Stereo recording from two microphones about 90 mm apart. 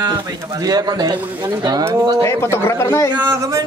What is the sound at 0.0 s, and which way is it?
Speech, 45° right (ahead or behind).